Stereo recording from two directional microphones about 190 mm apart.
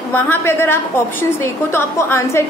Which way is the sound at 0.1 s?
10° left (ahead or behind).